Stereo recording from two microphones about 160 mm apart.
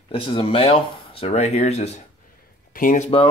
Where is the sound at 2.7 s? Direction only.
60° left (ahead or behind).